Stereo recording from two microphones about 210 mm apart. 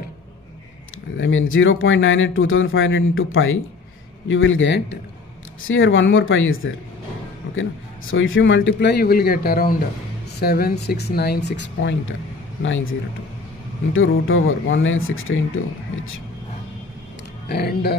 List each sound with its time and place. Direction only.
1.1 s speech: 70° left (ahead or behind)
5.6 s a man's voice: 70° left (ahead or behind)
13.9 s speech: 70° left (ahead or behind)
17.5 s a man's voice: 50° left (ahead or behind)